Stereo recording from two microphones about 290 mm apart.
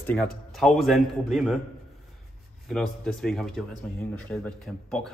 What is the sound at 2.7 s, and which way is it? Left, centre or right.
Speech, centre.